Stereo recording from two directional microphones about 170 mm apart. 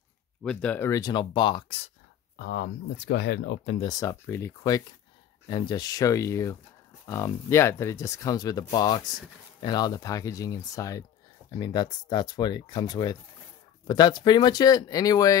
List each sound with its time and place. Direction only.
0.4 s speech: 5° left (ahead or behind); by 1.8 s 30° left (ahead or behind)
2.3 s speech: 75° left (ahead or behind)
3.8 s speech: 20° left (ahead or behind)